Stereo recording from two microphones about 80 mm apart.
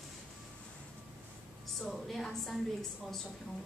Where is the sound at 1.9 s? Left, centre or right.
Centre.